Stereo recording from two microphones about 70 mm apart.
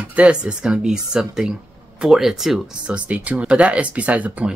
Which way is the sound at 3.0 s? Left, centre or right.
Centre.